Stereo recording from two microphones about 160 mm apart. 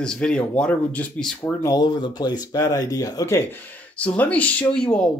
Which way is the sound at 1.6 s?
25° left (ahead or behind).